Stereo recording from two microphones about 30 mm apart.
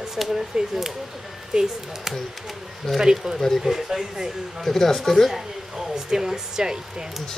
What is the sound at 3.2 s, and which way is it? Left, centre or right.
Speech, centre.